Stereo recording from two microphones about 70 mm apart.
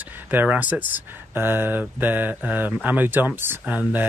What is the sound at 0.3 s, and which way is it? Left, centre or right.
Speech, right.